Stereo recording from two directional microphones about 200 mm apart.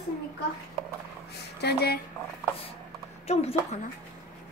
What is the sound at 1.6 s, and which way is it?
Speech, 50° left (ahead or behind).